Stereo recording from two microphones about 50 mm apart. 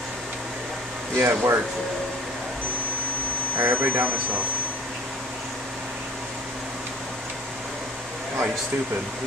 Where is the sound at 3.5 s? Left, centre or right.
Right.